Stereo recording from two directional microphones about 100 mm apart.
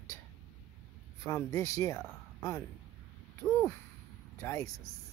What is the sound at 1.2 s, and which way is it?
Speech, 30° left (ahead or behind).